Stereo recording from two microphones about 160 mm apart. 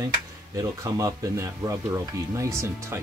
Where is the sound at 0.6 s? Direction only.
20° right (ahead or behind).